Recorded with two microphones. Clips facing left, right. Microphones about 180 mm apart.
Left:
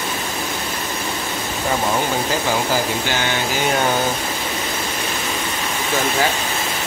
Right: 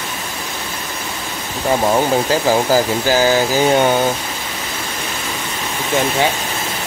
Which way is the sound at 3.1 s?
35° right (ahead or behind).